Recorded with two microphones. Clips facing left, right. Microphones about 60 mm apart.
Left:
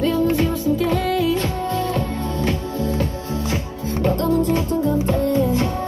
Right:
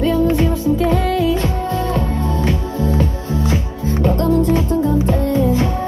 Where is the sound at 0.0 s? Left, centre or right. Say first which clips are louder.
Right 3 dB; right.